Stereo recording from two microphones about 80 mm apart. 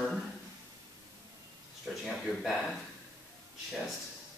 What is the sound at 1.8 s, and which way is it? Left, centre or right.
Speech, centre.